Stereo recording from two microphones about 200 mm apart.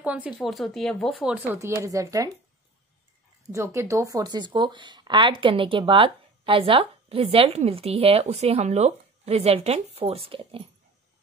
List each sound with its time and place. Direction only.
0.0 s speech: 5° right (ahead or behind)
3.5 s speech: 15° right (ahead or behind)